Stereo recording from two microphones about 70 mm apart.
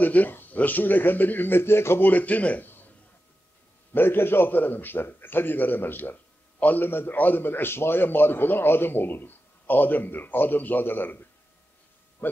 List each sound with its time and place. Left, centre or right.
0.0 s a man's voice: left
3.9 s a man's voice: left